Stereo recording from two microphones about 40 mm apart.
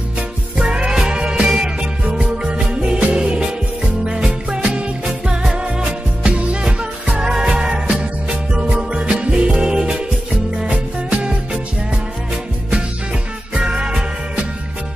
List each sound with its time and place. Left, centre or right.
0.6 s music: right
13.6 s music: right